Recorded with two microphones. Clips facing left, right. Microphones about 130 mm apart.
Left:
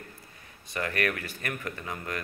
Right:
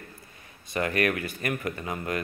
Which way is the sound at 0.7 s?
15° right (ahead or behind).